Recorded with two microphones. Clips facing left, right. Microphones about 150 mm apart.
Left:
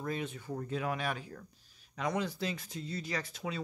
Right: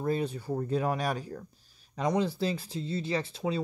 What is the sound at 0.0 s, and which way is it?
Speech, 35° right (ahead or behind).